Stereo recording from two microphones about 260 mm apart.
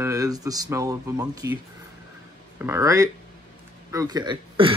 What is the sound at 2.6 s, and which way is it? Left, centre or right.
Speech, centre.